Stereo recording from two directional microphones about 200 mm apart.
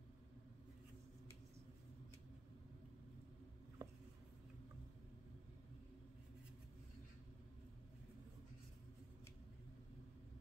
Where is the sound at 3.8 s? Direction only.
20° right (ahead or behind).